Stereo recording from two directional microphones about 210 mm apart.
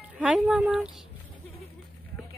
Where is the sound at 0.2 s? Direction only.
5° right (ahead or behind).